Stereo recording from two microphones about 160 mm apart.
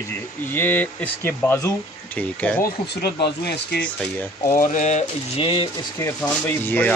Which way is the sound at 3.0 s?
90° left.